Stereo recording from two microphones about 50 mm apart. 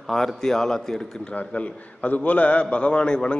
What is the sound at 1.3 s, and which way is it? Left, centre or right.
A man's voice, left.